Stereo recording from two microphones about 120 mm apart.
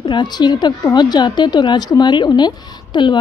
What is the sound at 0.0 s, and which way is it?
Speech, 35° left (ahead or behind).